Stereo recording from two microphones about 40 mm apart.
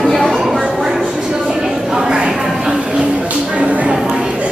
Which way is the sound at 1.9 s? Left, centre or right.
Right.